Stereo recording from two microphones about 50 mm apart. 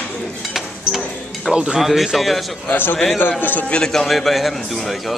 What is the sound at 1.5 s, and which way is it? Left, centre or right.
Speech, centre.